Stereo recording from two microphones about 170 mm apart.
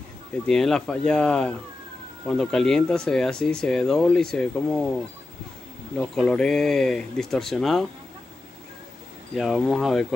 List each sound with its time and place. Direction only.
0.5 s speech: 5° left (ahead or behind)
9.3 s speech: centre (ahead or behind)